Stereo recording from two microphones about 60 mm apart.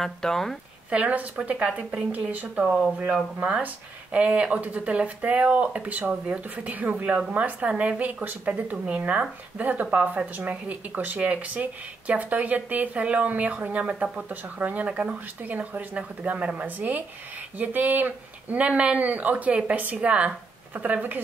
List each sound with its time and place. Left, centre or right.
0.0 s speech: centre
0.8 s speech: right